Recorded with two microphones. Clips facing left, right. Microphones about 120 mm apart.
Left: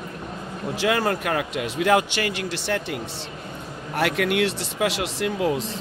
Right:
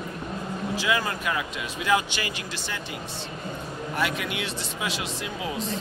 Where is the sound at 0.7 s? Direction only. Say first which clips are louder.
Left 5 dB; 60° left (ahead or behind).